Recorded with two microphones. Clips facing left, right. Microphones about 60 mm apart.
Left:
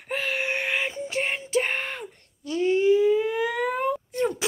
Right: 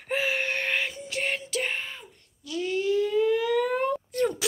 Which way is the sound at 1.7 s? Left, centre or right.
Left.